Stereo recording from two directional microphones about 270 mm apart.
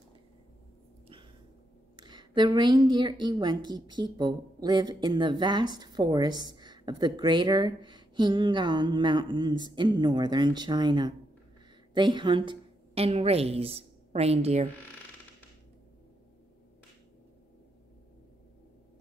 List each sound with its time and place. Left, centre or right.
2.0 s a woman's voice: centre